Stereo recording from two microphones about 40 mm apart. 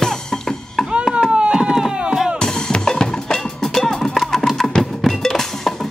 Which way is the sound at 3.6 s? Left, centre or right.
Centre.